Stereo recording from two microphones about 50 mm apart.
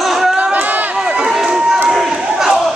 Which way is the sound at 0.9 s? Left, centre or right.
Centre.